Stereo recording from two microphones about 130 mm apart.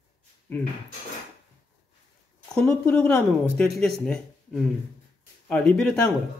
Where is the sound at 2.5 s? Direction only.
5° left (ahead or behind).